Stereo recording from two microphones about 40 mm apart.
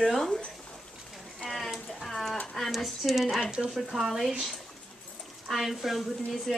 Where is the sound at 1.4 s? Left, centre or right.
Centre.